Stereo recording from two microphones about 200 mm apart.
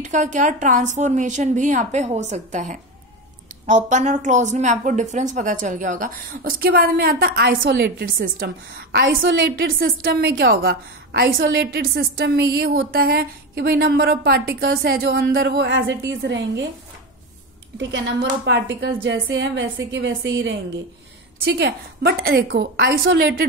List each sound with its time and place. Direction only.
0.0 s a woman's voice: 40° right (ahead or behind); by 16.6 s 60° right (ahead or behind)
17.7 s a woman's voice: 65° right (ahead or behind)
21.5 s a woman's voice: 55° right (ahead or behind)